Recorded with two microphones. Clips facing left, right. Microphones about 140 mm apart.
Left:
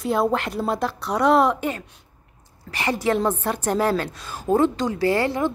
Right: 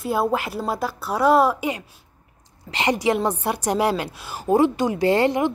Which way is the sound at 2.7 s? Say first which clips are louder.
Right 1 dB; 20° right (ahead or behind).